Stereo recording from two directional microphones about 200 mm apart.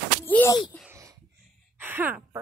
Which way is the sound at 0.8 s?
15° right (ahead or behind).